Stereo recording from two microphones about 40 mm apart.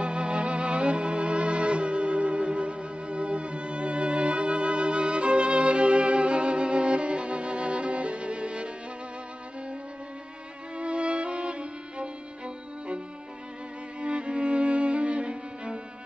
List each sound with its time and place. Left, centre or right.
0.0 s music: right
10.8 s music: right
14.0 s music: right